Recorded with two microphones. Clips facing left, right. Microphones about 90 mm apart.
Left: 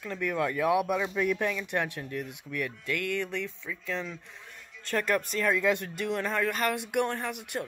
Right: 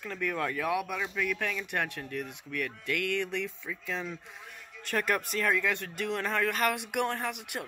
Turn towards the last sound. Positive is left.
turn(degrees=0)  # may be behind; listen again after turning